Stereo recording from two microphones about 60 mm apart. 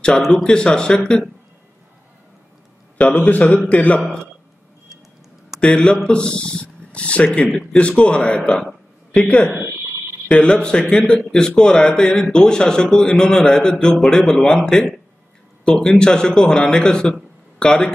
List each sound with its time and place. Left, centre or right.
0.3 s speech: centre
3.0 s speech: left
5.6 s a man's voice: centre